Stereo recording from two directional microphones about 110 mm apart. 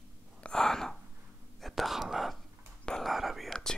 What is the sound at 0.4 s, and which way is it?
Gasp, 5° left (ahead or behind).